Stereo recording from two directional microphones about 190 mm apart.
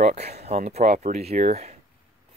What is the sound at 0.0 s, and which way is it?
Speech, 35° right (ahead or behind).